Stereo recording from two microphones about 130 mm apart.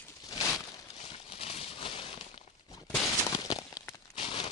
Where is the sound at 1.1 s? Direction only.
45° left (ahead or behind).